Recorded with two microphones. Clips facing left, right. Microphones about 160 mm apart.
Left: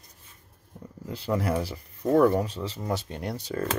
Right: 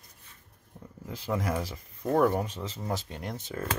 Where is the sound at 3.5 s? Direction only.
55° left (ahead or behind).